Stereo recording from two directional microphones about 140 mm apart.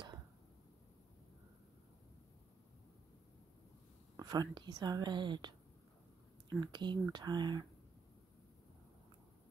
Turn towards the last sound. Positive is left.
turn(degrees=-30)  # may be behind; listen again after turning